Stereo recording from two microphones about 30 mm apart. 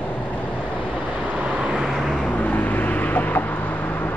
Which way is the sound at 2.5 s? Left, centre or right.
Left.